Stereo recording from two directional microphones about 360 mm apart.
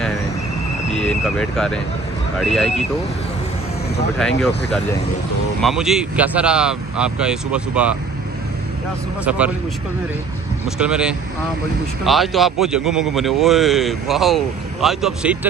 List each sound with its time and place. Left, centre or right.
0.8 s a sound: centre
1.2 s a man's voice: centre
5.6 s a man's voice: centre
9.2 s a man's voice: centre
10.8 s a man's voice: centre